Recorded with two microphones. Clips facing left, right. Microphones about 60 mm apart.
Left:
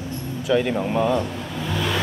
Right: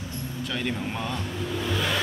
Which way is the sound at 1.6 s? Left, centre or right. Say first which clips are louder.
Left 3 dB; centre.